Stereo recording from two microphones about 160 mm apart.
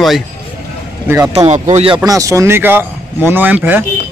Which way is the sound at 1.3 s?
45° right (ahead or behind).